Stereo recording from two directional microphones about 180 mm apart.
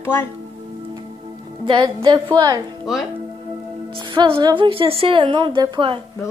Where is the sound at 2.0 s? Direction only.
25° right (ahead or behind).